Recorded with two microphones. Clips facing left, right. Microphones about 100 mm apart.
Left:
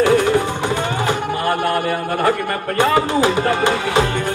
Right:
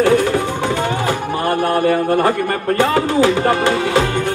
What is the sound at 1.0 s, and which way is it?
Music, 25° right (ahead or behind).